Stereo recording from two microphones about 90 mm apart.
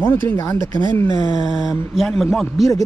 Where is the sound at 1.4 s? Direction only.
5° right (ahead or behind).